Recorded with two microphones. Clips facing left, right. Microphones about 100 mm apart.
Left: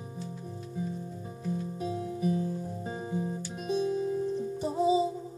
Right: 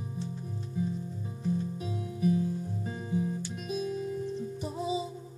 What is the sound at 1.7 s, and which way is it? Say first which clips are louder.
Music: left 4 dB; 35° left (ahead or behind).